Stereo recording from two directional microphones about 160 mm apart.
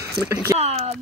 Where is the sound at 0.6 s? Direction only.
40° right (ahead or behind).